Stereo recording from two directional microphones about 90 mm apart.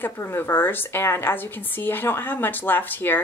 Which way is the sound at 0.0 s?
25° left (ahead or behind).